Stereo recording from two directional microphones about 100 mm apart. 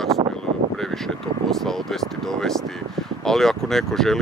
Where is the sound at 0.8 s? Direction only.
5° left (ahead or behind).